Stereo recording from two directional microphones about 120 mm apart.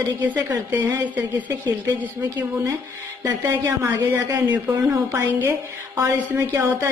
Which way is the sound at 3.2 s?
25° right (ahead or behind).